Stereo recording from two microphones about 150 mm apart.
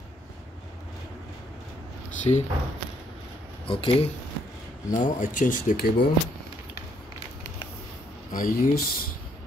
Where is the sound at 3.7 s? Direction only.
40° left (ahead or behind).